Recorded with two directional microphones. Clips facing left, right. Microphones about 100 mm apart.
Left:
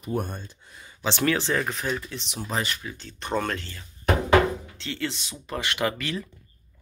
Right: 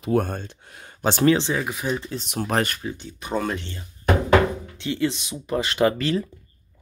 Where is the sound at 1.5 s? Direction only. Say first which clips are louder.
Right 1 dB; 10° right (ahead or behind).